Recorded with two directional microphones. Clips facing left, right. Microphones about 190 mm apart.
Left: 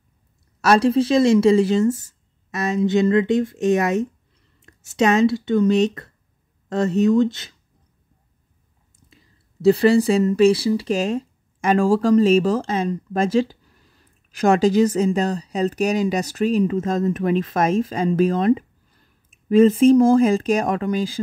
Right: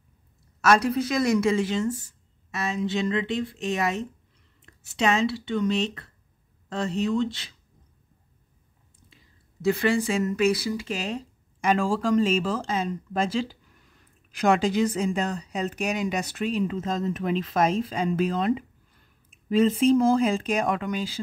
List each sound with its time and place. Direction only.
0.6 s a woman's voice: 30° left (ahead or behind)
9.1 s speech: 35° left (ahead or behind)